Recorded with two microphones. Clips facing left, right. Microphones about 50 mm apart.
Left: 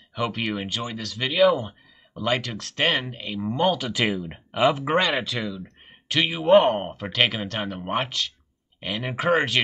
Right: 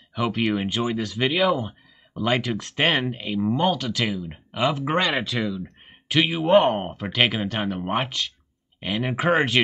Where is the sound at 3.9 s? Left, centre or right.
Left.